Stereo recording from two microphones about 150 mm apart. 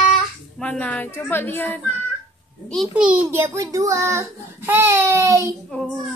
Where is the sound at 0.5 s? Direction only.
10° left (ahead or behind).